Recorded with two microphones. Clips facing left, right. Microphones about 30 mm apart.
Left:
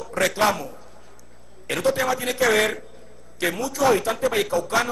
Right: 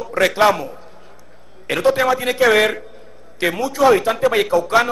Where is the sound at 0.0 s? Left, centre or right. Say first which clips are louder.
Right 6 dB; right.